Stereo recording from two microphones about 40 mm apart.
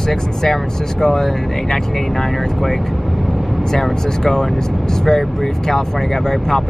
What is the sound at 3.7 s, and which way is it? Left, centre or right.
Speech, centre.